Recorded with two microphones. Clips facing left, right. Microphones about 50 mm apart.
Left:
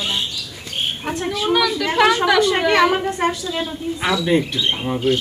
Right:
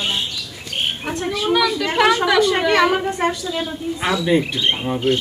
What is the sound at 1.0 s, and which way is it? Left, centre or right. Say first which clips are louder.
Speech: left 2 dB; centre.